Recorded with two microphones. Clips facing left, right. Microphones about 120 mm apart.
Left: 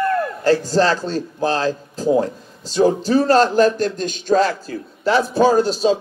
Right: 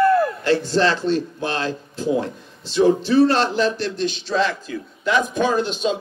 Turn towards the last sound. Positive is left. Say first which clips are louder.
# left 5 dB
turn(degrees=35)  # may be behind; listen again after turning